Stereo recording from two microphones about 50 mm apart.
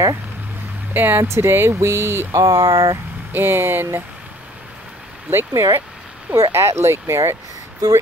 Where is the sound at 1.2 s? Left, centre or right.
Right.